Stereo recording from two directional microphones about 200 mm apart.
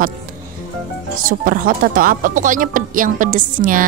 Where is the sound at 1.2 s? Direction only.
45° right (ahead or behind).